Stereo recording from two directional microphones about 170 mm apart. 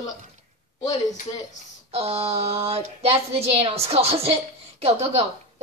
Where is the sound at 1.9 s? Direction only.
35° right (ahead or behind).